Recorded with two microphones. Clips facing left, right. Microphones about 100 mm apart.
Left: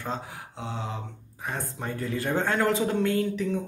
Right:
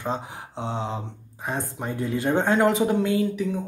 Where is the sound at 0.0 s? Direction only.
25° right (ahead or behind).